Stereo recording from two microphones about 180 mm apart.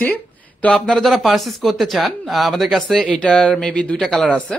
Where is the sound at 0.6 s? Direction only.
5° left (ahead or behind).